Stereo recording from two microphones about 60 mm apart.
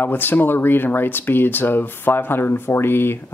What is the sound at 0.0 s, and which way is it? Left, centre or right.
Speech, left.